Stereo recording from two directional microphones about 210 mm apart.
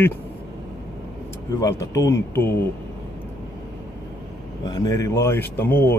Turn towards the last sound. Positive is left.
turn(degrees=10)  # may be behind; listen again after turning